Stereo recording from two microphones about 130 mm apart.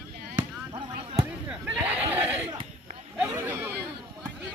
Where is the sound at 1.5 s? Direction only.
15° right (ahead or behind).